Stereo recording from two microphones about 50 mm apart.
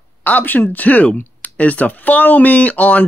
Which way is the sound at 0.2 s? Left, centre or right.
Left.